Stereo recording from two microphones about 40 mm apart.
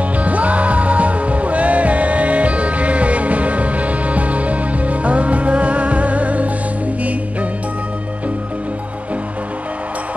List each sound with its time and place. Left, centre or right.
0.2 s music: right